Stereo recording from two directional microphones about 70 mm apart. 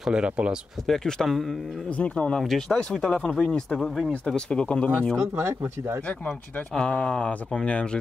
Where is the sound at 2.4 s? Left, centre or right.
Centre.